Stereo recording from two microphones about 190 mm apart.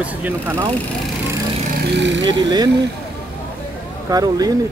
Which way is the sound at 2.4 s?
20° right (ahead or behind).